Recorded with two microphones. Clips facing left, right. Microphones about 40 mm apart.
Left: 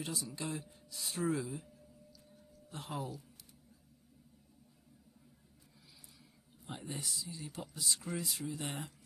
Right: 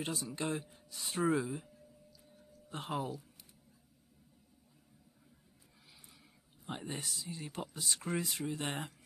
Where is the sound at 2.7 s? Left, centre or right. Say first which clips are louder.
Right 4 dB; right.